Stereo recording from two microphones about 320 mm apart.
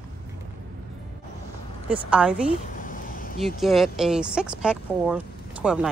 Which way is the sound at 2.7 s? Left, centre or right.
Left.